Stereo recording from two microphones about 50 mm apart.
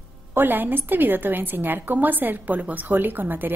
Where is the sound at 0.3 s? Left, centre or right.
Right.